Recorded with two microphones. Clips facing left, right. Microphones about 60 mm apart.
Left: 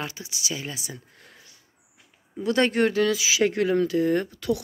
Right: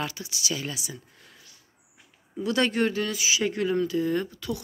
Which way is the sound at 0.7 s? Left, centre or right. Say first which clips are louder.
Even; left.